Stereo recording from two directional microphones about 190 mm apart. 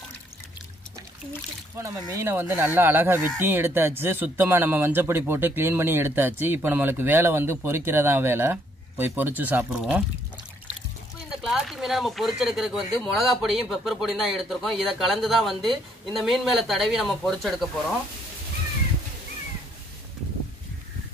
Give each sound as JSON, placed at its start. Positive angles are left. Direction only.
{"t": 1.8, "sound": "speech", "side_deg": -15}
{"t": 11.4, "sound": "speech", "side_deg": 0}